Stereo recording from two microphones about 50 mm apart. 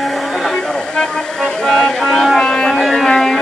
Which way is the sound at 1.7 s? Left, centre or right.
Centre.